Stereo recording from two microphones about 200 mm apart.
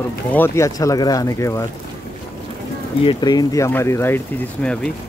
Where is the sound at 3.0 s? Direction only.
25° left (ahead or behind).